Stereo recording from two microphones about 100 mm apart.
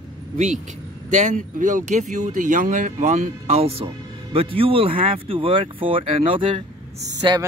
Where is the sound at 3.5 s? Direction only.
75° right (ahead or behind); by 6.6 s 60° right (ahead or behind).